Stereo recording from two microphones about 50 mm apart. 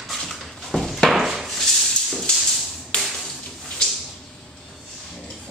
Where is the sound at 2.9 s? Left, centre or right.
Centre.